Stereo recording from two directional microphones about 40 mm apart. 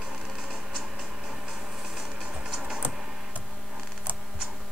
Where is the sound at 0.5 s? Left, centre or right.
Centre.